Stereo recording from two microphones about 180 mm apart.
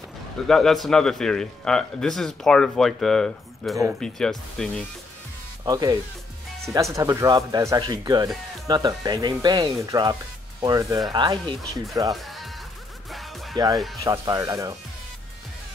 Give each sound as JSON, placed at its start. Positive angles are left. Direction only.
{"t": 0.5, "sound": "a man's voice", "side_deg": 0}
{"t": 5.7, "sound": "speech", "side_deg": -20}
{"t": 12.2, "sound": "music", "side_deg": 0}
{"t": 14.0, "sound": "speech", "side_deg": -20}